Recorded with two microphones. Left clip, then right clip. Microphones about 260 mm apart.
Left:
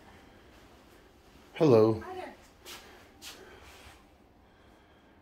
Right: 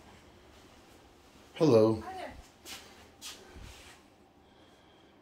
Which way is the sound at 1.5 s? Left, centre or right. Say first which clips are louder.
Left 1 dB; centre.